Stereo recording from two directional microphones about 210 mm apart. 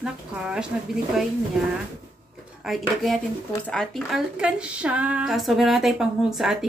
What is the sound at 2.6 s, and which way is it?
Speech, centre (ahead or behind).